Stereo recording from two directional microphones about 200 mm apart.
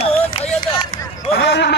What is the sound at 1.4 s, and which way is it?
Speech, 60° left (ahead or behind).